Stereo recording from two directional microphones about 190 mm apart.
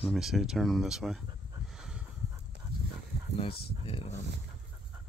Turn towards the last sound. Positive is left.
turn(degrees=30)  # may be behind; listen again after turning